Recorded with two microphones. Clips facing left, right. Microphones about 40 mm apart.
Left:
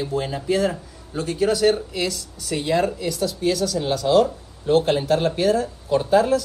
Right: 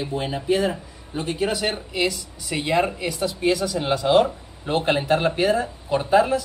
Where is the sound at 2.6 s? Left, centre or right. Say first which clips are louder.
Even; right.